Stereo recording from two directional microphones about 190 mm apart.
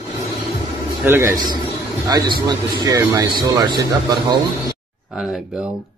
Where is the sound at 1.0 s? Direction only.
15° right (ahead or behind).